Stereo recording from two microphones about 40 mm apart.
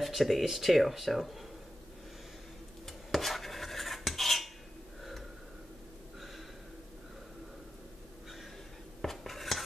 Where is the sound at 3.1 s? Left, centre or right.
Centre.